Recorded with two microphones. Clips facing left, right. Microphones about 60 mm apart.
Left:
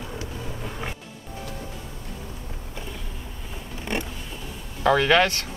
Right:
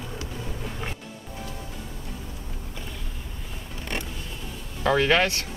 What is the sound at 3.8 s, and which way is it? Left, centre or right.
Vehicle, centre.